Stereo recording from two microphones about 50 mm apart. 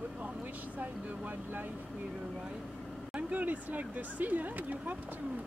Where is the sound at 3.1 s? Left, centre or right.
Right.